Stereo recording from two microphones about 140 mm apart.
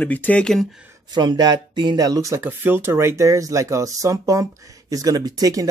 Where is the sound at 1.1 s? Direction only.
30° right (ahead or behind).